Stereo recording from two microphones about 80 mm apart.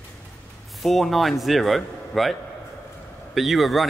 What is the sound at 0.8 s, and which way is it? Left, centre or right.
A man's voice, centre.